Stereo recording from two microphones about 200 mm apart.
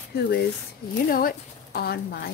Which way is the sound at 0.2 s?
55° left (ahead or behind).